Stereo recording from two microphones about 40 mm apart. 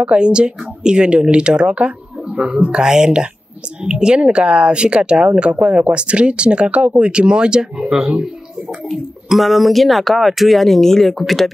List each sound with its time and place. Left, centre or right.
0.0 s speech: right
8.9 s speech: centre